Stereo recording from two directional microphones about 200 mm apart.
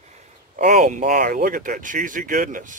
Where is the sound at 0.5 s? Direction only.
40° right (ahead or behind).